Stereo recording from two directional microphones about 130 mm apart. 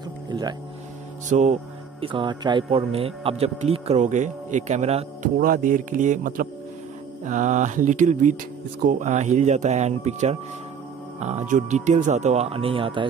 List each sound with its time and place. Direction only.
0.3 s speech: 35° right (ahead or behind)
1.3 s speech: 65° right (ahead or behind)
2.0 s speech: 40° right (ahead or behind); by 5.3 s 55° right (ahead or behind)
5.4 s speech: 90° right
7.2 s speech: 75° right (ahead or behind); by 13.1 s 40° right (ahead or behind)